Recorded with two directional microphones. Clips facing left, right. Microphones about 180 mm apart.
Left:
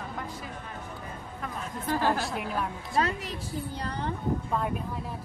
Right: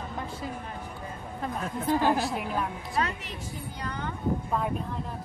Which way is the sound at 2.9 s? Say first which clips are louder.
Left 3 dB; 35° left (ahead or behind).